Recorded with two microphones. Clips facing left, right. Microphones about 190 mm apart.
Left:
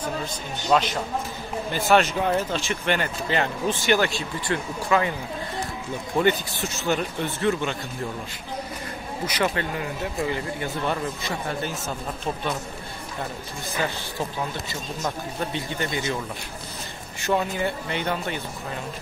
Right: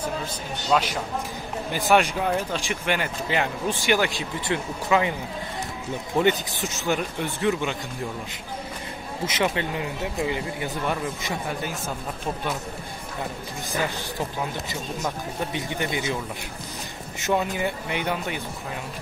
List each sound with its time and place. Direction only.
0.7 s speech: 10° right (ahead or behind)
6.1 s speech: 15° right (ahead or behind)
9.2 s speech: 20° right (ahead or behind)
15.5 s speech: 15° right (ahead or behind)
17.2 s speech: 10° right (ahead or behind)